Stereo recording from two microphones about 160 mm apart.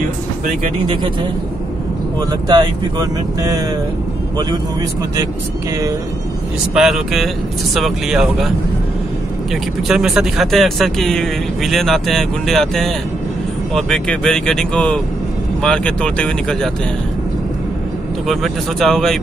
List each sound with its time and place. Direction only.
2.1 s speech: 25° right (ahead or behind)
6.7 s speech: centre (ahead or behind)
9.5 s speech: centre (ahead or behind)
18.2 s speech: centre (ahead or behind)